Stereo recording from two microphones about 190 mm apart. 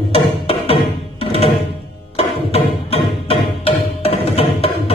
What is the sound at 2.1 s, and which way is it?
Music, 30° left (ahead or behind).